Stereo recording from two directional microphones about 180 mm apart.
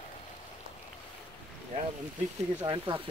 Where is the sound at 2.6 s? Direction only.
25° right (ahead or behind).